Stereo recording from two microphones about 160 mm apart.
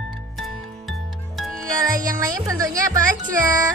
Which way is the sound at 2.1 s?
20° right (ahead or behind).